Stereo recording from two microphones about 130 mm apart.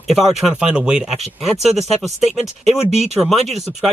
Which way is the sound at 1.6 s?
55° right (ahead or behind).